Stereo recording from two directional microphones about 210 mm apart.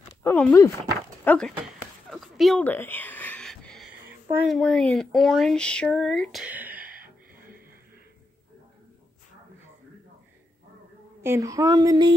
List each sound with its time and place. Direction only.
0.2 s speech: 10° left (ahead or behind)
2.0 s a sound: centre (ahead or behind)
4.4 s speech: centre (ahead or behind)
11.2 s speech: 15° right (ahead or behind)